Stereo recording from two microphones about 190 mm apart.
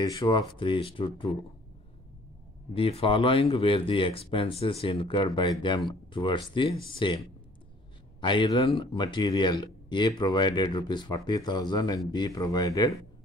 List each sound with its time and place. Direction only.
0.0 s speech: 20° left (ahead or behind)
2.7 s speech: 30° left (ahead or behind)